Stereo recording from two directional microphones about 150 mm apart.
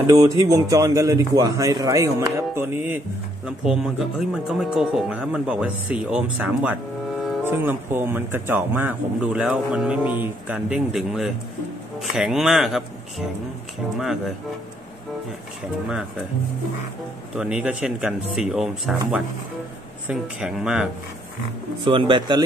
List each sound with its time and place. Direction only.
0.0 s speech: 25° right (ahead or behind)
3.4 s speech: 5° right (ahead or behind)
17.4 s speech: 5° right (ahead or behind)
21.8 s speech: 35° right (ahead or behind)